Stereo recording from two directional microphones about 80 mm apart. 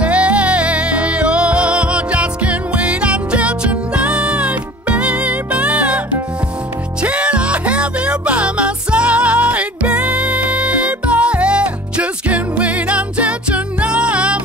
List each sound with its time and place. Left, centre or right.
0.0 s music: centre
7.0 s music: centre